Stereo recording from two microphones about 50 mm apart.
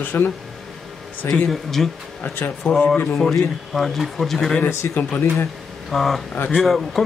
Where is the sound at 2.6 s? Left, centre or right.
Left.